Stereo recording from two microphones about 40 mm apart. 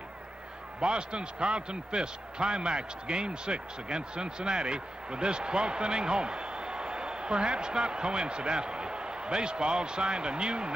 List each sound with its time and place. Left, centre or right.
0.7 s speech: right